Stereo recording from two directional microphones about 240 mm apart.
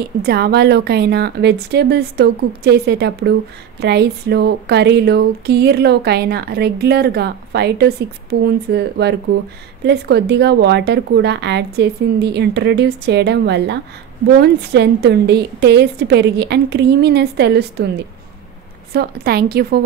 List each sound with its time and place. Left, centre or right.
0.0 s a woman's voice: right